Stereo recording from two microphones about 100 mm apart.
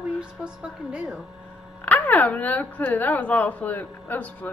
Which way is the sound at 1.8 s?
15° left (ahead or behind).